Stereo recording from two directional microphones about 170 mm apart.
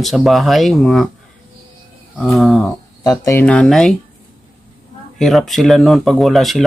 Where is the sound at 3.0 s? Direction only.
20° left (ahead or behind).